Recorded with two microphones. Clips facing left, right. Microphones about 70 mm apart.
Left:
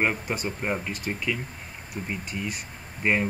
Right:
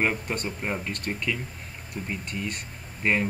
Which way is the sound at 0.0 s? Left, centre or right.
Centre.